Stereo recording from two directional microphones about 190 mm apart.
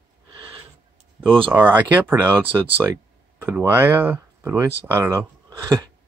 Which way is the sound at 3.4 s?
10° right (ahead or behind).